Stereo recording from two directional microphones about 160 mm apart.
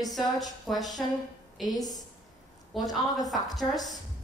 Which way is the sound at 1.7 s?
25° left (ahead or behind).